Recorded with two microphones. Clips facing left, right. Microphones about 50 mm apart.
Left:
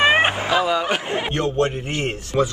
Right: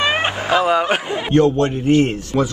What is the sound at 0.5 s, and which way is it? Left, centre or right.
Speech, right.